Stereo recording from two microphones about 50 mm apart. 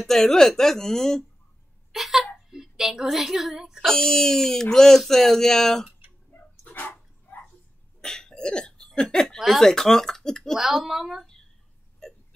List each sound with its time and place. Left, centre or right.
0.0 s speech: centre
1.9 s a sound: centre
2.5 s a woman's voice: centre
3.8 s speech: centre
5.9 s a sound: right
6.6 s dog: left
8.0 s cough: centre
9.4 s speech: centre
10.6 s speech: centre